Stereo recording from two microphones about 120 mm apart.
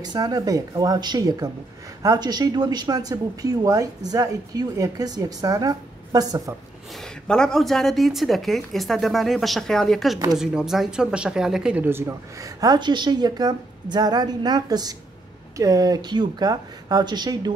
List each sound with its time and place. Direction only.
0.0 s speech: 35° right (ahead or behind)
7.2 s speech: 5° left (ahead or behind)
11.8 s speech: 20° right (ahead or behind)